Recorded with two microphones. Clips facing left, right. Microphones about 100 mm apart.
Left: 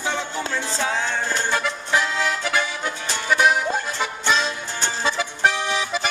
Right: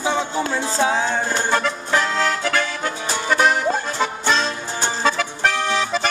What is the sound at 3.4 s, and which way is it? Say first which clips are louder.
Music: right 1 dB; 5° left (ahead or behind).